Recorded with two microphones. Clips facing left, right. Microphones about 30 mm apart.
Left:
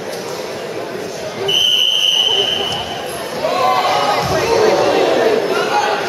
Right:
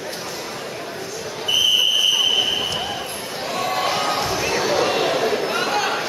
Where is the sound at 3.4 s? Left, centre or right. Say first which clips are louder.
Left 8 dB; left.